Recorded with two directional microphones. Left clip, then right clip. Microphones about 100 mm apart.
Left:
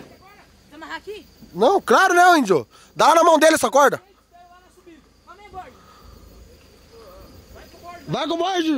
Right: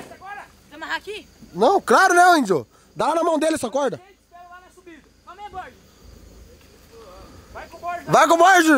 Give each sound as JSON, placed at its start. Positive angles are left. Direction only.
{"t": 0.7, "sound": "a sound", "side_deg": -10}
{"t": 1.5, "sound": "speech", "side_deg": 0}
{"t": 3.0, "sound": "a man's voice", "side_deg": 20}
{"t": 8.1, "sound": "a man's voice", "side_deg": -35}